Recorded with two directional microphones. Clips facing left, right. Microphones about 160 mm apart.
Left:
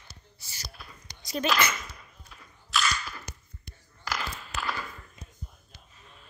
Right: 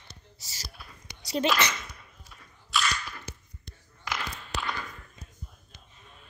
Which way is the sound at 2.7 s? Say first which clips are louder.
Even; centre (ahead or behind).